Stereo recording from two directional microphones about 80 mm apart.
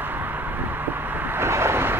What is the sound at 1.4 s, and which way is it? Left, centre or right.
Vehicle, right.